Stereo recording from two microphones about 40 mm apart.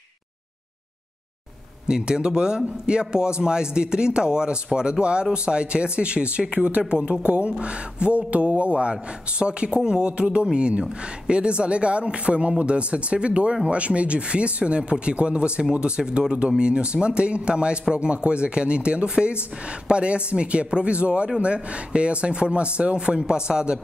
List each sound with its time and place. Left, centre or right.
1.9 s a man's voice: centre